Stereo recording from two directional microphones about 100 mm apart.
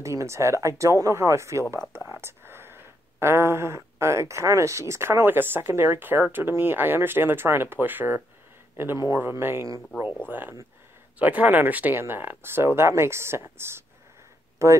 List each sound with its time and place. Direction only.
0.0 s speech: 30° right (ahead or behind)
11.1 s speech: 15° right (ahead or behind)